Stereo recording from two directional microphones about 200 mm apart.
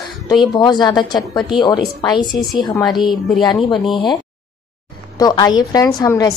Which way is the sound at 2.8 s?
Centre (ahead or behind).